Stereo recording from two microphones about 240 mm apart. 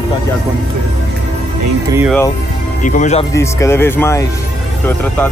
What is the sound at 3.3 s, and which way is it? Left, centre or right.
Speech, centre.